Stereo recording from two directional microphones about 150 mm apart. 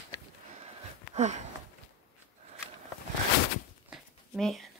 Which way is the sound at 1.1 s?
50° right (ahead or behind).